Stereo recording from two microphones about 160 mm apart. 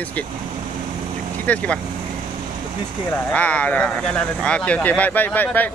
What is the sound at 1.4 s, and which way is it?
Speech, 10° left (ahead or behind).